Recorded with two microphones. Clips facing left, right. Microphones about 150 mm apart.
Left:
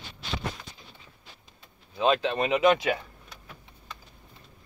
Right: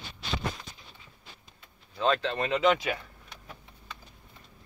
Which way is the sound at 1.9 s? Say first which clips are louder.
Left 3 dB; 15° left (ahead or behind).